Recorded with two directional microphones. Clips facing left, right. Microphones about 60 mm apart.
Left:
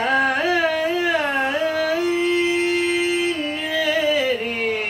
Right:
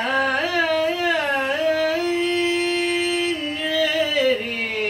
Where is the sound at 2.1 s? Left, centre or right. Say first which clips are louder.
Left 2 dB; centre.